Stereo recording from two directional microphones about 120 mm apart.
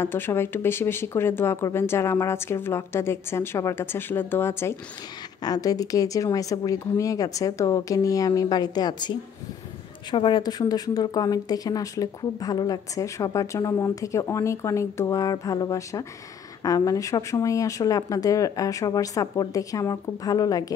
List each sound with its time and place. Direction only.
0.0 s speech: 20° left (ahead or behind)
5.4 s speech: 30° left (ahead or behind)
10.1 s speech: 40° left (ahead or behind)